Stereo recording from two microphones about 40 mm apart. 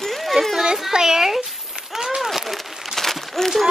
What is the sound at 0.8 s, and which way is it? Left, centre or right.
Speech, centre.